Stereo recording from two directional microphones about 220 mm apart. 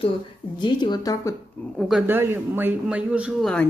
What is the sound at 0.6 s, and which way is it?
Speech, 20° left (ahead or behind).